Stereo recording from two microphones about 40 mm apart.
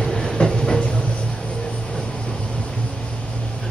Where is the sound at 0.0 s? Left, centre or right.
Centre.